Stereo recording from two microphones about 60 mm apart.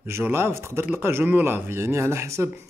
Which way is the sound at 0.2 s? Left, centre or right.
Right.